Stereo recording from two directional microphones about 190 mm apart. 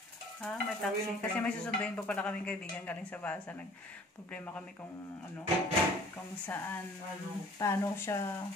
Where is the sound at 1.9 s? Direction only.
5° left (ahead or behind).